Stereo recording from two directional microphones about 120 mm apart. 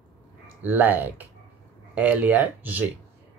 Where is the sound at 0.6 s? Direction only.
15° right (ahead or behind).